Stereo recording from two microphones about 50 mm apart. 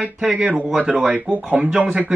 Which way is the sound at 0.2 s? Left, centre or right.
Centre.